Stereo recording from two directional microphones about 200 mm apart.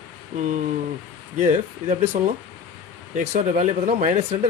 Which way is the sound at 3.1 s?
40° right (ahead or behind).